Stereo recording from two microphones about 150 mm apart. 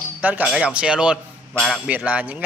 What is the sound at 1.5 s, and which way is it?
Speech, 5° left (ahead or behind).